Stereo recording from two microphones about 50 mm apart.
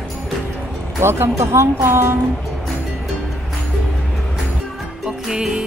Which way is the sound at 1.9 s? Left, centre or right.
Right.